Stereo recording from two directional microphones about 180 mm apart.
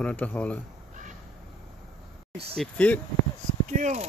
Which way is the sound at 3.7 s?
45° right (ahead or behind).